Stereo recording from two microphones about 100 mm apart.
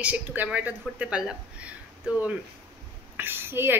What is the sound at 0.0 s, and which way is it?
Speech, 15° right (ahead or behind).